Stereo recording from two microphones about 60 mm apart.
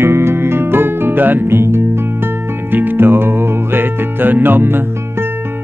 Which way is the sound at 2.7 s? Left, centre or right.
Right.